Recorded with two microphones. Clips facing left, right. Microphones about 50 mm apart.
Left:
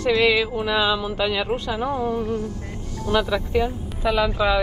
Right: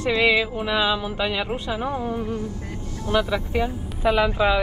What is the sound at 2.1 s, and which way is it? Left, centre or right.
Speech, centre.